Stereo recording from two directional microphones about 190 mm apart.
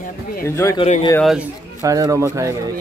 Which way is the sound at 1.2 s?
Centre (ahead or behind).